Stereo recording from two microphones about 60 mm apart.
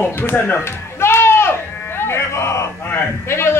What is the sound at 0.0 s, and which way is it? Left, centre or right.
Speech, left.